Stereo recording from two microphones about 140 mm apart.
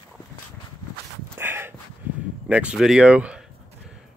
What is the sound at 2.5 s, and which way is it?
Speech, 10° right (ahead or behind).